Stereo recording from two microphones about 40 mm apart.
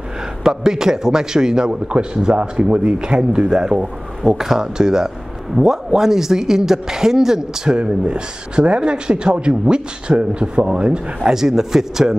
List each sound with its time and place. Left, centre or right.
0.4 s a man's voice: centre
7.7 s a man's voice: right
11.2 s speech: centre